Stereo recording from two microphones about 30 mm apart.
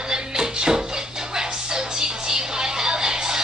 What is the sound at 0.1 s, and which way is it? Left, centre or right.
Music, right.